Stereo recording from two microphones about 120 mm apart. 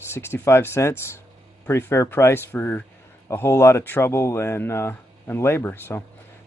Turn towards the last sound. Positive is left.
turn(degrees=20)  # may be behind; listen again after turning